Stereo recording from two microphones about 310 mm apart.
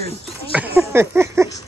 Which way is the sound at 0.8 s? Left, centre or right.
Centre.